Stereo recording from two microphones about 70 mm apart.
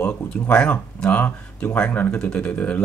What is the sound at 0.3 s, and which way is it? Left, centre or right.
Speech, centre.